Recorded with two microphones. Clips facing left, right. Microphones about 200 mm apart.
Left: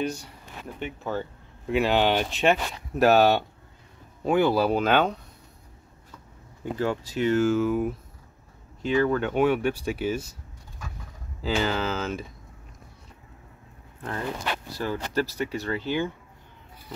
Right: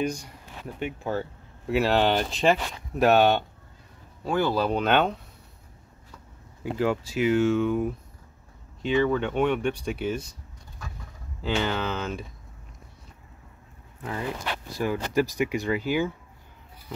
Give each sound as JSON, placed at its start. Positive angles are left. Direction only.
{"t": 0.7, "sound": "speech", "side_deg": -5}
{"t": 4.2, "sound": "speech", "side_deg": 15}
{"t": 6.6, "sound": "speech", "side_deg": -10}
{"t": 11.4, "sound": "speech", "side_deg": 5}
{"t": 14.8, "sound": "speech", "side_deg": -15}